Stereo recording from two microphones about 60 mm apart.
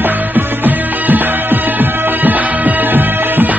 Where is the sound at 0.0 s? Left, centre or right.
Right.